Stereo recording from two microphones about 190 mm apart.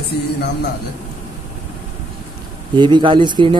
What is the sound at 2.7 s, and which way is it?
Speech, 25° right (ahead or behind).